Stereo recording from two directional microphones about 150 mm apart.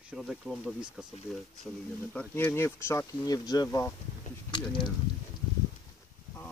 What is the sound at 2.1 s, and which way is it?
Speech, 10° left (ahead or behind).